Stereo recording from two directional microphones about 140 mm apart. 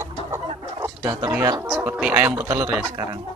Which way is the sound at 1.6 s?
15° right (ahead or behind).